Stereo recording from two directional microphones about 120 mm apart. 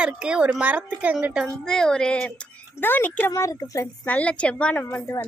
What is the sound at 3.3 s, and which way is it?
Speech, 25° left (ahead or behind).